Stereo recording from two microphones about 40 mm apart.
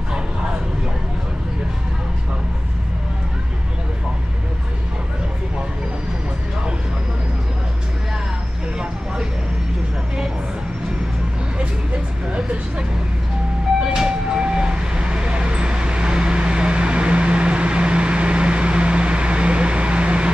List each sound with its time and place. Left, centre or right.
8.7 s vehicle: centre
13.8 s vehicle: centre